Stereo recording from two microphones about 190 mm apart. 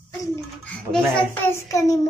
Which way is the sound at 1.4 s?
15° left (ahead or behind).